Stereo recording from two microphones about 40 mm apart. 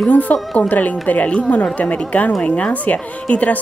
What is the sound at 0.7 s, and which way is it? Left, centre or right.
A woman's voice, left.